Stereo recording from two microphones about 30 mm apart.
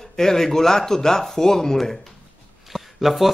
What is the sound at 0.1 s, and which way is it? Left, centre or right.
Speech, centre.